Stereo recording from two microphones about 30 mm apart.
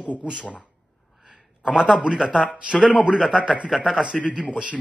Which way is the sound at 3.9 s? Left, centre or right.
Right.